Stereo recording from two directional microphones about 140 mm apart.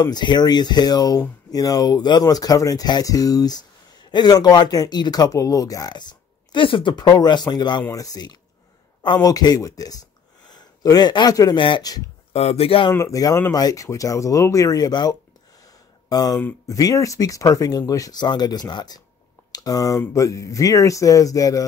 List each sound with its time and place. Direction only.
0.0 s speech: 30° left (ahead or behind)
12.3 s speech: 45° left (ahead or behind)
12.9 s speech: 20° left (ahead or behind)